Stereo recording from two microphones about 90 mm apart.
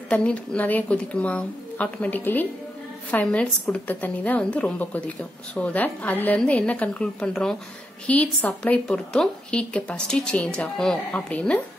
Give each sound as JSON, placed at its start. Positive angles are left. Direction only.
{"t": 0.1, "sound": "a woman's voice", "side_deg": 10}